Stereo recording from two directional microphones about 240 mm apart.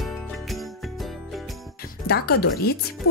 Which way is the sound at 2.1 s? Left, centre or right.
Left.